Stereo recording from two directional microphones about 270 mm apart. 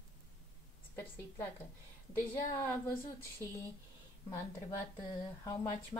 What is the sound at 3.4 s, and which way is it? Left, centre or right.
Speech, centre.